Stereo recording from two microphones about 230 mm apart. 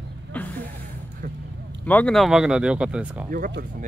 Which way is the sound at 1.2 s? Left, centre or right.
Right.